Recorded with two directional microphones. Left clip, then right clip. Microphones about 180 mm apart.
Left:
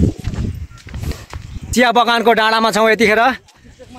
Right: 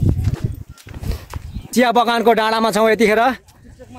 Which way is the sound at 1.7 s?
10° right (ahead or behind).